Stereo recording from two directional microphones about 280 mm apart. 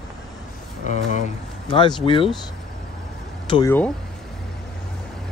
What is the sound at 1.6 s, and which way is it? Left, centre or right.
Speech, centre.